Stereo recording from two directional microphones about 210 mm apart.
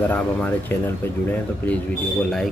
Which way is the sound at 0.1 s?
10° left (ahead or behind).